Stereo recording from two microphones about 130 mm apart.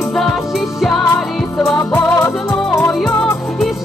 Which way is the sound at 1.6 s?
20° left (ahead or behind).